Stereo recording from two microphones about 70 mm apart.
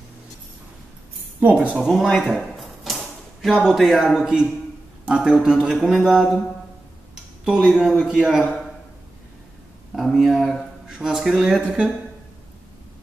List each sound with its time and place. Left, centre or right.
1.4 s a man's voice: centre
2.0 s typewriter: centre
3.5 s a man's voice: centre
7.4 s a man's voice: centre
9.9 s speech: centre
10.9 s a man's voice: centre